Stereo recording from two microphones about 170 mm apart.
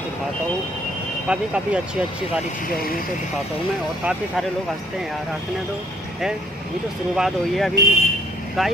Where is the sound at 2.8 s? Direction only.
60° left (ahead or behind).